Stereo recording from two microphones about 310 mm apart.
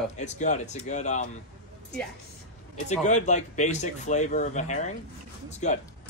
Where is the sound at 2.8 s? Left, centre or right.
Left.